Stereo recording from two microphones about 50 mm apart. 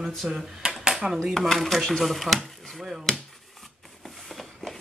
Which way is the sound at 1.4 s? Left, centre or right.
Centre.